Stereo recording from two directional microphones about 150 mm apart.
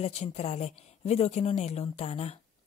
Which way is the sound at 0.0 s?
45° left (ahead or behind).